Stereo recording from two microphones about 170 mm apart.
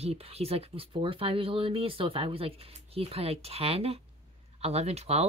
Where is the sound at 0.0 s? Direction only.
35° right (ahead or behind).